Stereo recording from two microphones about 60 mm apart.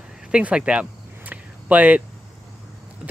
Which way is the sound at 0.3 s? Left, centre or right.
Right.